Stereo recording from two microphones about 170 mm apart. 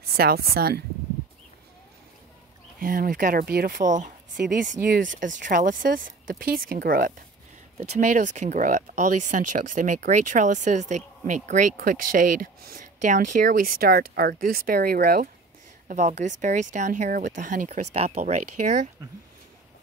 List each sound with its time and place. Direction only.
0.2 s speech: 65° right (ahead or behind)
2.8 s speech: 55° right (ahead or behind)
4.4 s speech: 60° right (ahead or behind)
4.8 s speech: 75° right (ahead or behind)
5.2 s speech: 50° right (ahead or behind)
7.7 s speech: 40° right (ahead or behind); by 15.2 s 65° right (ahead or behind)
15.9 s speech: 45° right (ahead or behind)